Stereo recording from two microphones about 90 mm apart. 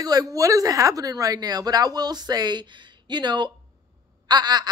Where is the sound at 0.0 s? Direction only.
45° right (ahead or behind).